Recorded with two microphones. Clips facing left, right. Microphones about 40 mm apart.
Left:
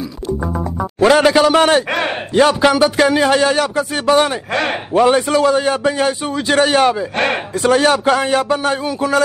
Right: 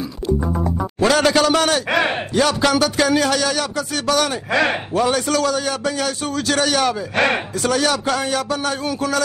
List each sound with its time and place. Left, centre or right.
0.9 s a man's voice: left
1.6 s a man's voice: left